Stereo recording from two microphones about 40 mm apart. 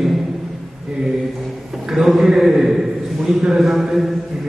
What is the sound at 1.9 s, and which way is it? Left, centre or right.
A man's voice, centre.